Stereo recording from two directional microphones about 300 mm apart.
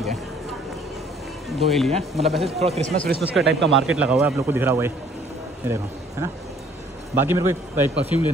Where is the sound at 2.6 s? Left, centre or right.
Right.